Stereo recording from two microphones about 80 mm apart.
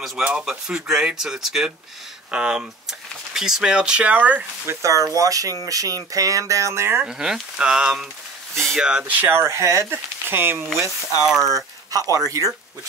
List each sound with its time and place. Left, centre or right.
0.0 s speech: centre
4.6 s speech: right
7.0 s speech: centre
9.2 s speech: right
11.2 s speech: centre
11.9 s speech: right